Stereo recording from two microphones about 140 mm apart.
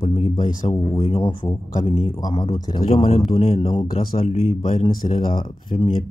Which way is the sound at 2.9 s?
45° left (ahead or behind).